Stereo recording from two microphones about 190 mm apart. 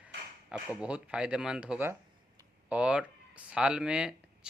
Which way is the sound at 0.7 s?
5° right (ahead or behind).